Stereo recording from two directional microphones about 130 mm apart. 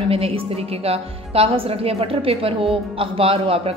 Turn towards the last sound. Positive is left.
turn(degrees=-45)  # may be behind; listen again after turning